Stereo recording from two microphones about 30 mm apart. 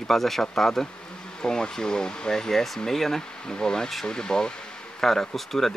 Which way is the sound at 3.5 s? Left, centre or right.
Left.